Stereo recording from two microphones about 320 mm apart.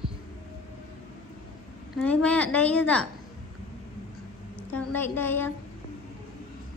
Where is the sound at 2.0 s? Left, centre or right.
Centre.